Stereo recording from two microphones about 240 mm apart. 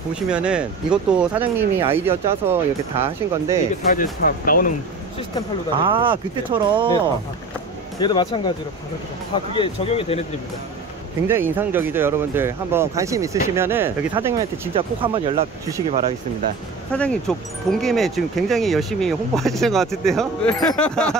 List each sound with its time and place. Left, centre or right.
0.1 s speech: centre
3.9 s speech: left
5.8 s speech: right
8.0 s speech: centre
11.2 s speech: centre
14.7 s speech: right
16.9 s speech: centre